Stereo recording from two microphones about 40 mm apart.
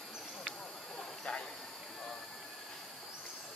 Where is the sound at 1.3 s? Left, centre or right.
Left.